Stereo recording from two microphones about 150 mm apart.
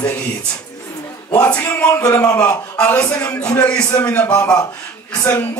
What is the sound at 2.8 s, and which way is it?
Speech, 15° left (ahead or behind).